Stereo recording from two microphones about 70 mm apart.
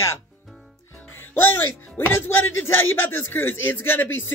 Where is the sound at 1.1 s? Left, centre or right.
Left.